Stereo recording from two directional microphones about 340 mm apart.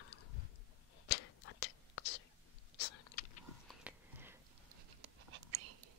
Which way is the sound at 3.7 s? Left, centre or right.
Centre.